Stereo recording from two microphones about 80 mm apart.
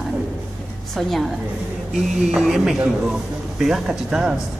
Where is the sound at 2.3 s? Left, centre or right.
Centre.